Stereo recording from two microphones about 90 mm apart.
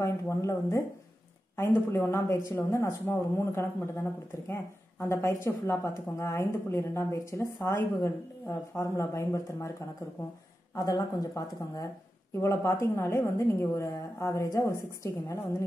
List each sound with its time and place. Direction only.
0.0 s a woman's voice: 35° left (ahead or behind)
10.7 s a woman's voice: 40° left (ahead or behind)